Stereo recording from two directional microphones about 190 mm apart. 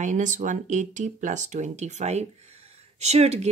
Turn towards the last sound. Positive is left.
turn(degrees=-35)  # may be behind; listen again after turning